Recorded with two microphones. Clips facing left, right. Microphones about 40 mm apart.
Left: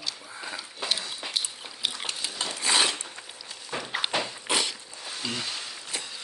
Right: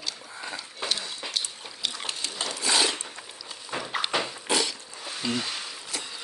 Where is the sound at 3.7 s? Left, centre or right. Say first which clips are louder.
Right 1 dB; centre.